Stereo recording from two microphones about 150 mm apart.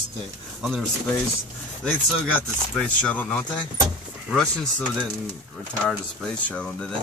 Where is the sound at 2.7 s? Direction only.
10° left (ahead or behind).